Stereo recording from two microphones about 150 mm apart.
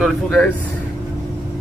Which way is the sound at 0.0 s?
5° left (ahead or behind).